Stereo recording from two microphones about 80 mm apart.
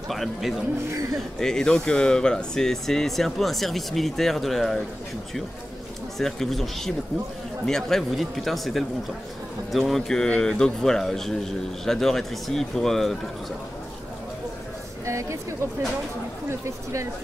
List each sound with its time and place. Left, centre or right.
0.1 s speech: centre
6.1 s speech: centre
15.0 s speech: right
16.4 s speech: right